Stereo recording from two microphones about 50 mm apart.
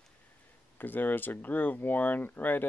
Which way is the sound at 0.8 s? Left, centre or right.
Left.